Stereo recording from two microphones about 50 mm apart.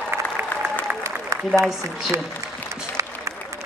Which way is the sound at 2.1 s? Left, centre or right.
Right.